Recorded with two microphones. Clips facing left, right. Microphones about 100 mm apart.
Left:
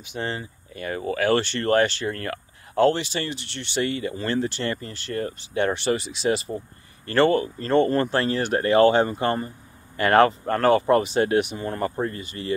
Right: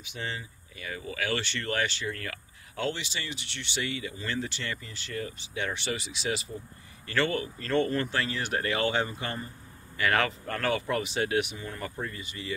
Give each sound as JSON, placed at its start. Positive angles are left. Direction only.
{"t": 0.1, "sound": "speech", "side_deg": 45}